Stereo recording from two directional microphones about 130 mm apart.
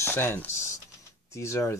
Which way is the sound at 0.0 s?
15° left (ahead or behind).